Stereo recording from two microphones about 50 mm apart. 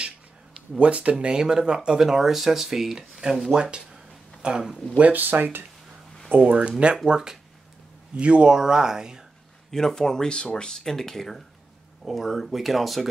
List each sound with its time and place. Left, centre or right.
0.7 s speech: right; by 3.1 s centre
3.3 s a sound: centre
4.9 s speech: right
6.3 s speech: right
7.1 s speech: centre
9.7 s speech: centre